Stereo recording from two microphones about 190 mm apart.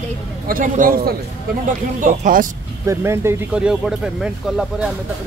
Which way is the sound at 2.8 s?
15° right (ahead or behind).